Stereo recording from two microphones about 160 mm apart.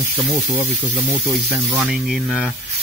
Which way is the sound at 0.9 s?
35° right (ahead or behind).